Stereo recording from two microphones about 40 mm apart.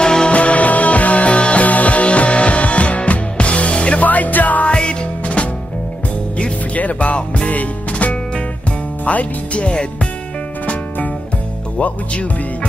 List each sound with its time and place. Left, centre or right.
0.0 s music: left
0.3 s music: left
4.6 s music: left
5.2 s music: left